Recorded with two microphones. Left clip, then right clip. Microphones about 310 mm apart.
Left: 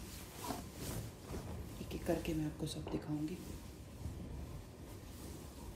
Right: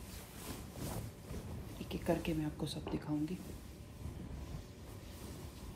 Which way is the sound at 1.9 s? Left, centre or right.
Right.